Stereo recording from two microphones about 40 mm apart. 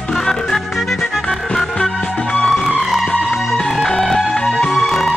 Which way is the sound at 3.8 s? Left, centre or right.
Centre.